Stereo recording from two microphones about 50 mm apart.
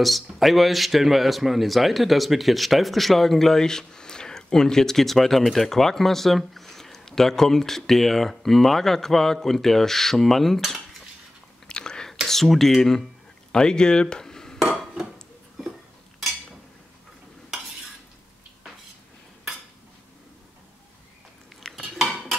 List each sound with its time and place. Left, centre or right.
0.0 s a man's voice: centre
11.6 s whispering: centre
12.3 s a man's voice: centre
13.5 s dishes: centre
14.6 s cutlery: centre
21.6 s stir: centre